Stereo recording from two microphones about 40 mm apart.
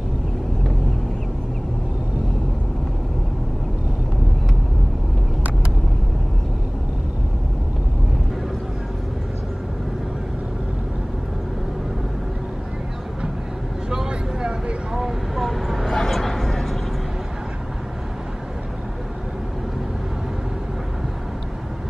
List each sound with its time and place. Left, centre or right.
13.8 s vehicle: centre
15.0 s vehicle: centre
16.0 s chatter: centre